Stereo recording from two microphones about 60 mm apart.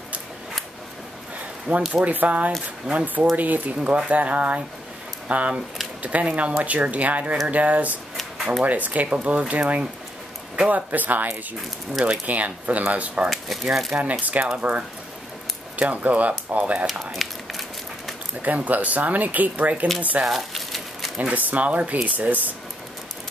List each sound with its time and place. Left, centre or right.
1.9 s speech: right
11.9 s speech: centre
12.3 s speech: right
13.7 s speech: centre
14.3 s speech: right
15.7 s speech: right
17.1 s a sound: centre
18.4 s speech: right
20.2 s crumpling: centre
21.2 s speech: right